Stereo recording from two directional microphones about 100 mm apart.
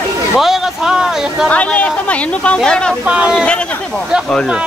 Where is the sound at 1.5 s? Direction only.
15° left (ahead or behind).